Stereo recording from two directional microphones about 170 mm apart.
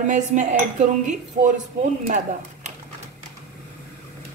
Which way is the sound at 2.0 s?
45° right (ahead or behind).